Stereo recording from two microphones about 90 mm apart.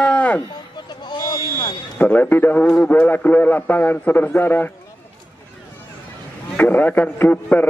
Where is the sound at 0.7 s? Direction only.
55° left (ahead or behind).